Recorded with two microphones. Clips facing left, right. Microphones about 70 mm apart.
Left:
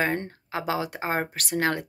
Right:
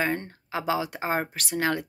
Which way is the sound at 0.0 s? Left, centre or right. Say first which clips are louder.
Left 1 dB; left.